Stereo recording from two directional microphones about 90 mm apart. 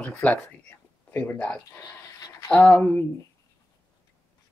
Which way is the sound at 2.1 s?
40° left (ahead or behind).